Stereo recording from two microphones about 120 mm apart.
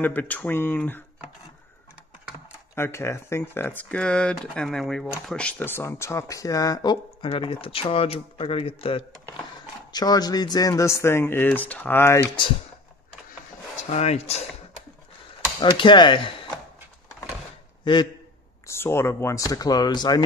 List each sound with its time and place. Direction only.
0.0 s speech: 15° left (ahead or behind)
2.7 s speech: 20° left (ahead or behind)
7.2 s speech: 45° left (ahead or behind)
9.9 s speech: 35° left (ahead or behind)
13.7 s speech: 65° left (ahead or behind)
15.6 s speech: 40° left (ahead or behind)
18.7 s speech: 20° left (ahead or behind)